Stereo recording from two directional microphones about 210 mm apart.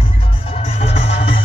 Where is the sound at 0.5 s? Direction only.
25° left (ahead or behind).